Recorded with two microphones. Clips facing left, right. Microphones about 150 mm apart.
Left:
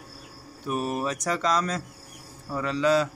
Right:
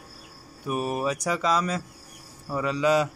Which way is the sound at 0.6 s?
10° right (ahead or behind).